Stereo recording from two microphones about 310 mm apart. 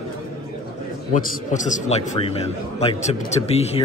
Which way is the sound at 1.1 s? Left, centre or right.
Left.